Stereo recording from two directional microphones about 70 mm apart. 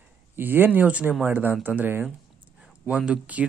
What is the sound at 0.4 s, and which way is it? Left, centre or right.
Speech, right.